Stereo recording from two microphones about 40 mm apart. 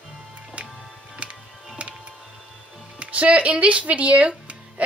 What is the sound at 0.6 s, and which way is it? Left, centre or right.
Music, right.